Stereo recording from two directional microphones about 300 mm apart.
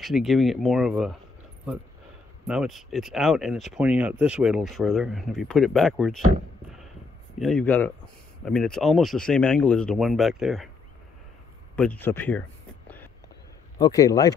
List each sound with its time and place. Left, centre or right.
0.0 s speech: centre
2.4 s speech: centre
7.3 s speech: centre
11.7 s a sound: centre
13.7 s a man's voice: centre